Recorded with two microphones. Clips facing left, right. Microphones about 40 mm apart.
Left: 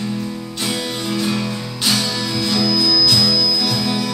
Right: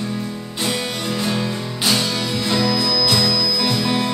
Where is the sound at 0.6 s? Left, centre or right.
Right.